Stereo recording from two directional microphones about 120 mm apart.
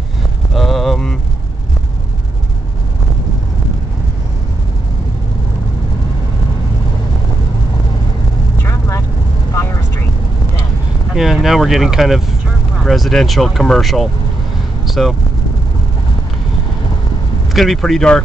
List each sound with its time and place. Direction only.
0.6 s a sound: centre (ahead or behind)
8.6 s vehicle: 25° left (ahead or behind)
11.1 s speech: 5° right (ahead or behind)
17.6 s speech: centre (ahead or behind)